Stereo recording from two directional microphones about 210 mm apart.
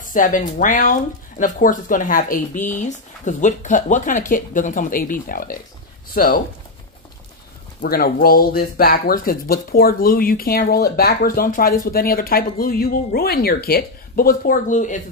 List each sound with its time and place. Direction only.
0.0 s speech: 40° left (ahead or behind)
7.8 s speech: 45° left (ahead or behind)